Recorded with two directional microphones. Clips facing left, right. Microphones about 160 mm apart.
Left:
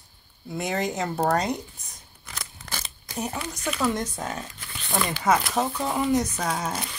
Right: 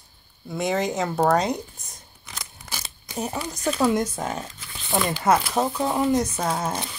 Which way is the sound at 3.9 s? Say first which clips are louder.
Right 4 dB; 10° right (ahead or behind).